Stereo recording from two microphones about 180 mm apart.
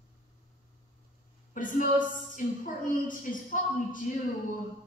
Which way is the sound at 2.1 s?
45° left (ahead or behind).